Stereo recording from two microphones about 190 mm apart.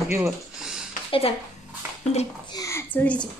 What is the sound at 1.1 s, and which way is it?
Speech, 30° left (ahead or behind).